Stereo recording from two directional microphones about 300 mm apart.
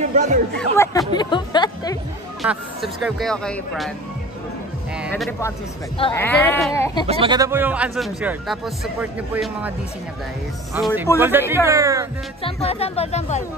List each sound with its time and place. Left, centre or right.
0.1 s speech: right
0.6 s speech: centre
2.4 s speech: centre
5.0 s speech: centre
5.9 s speech: centre
7.1 s speech: centre
10.7 s speech: centre
12.4 s speech: centre